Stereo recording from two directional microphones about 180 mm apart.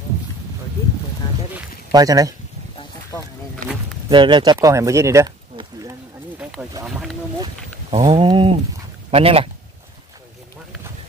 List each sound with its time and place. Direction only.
1.2 s a sound: 20° left (ahead or behind)
1.9 s speech: 20° right (ahead or behind)
4.1 s speech: 25° right (ahead or behind)
6.9 s wild animals: centre (ahead or behind)
7.9 s speech: 30° right (ahead or behind)